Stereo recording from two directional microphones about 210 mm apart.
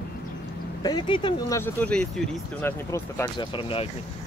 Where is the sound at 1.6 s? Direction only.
5° left (ahead or behind).